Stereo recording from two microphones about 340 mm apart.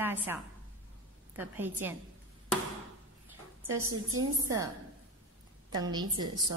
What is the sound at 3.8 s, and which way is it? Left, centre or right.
Speech, right.